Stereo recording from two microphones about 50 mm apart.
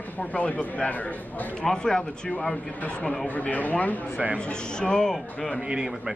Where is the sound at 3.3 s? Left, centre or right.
Left.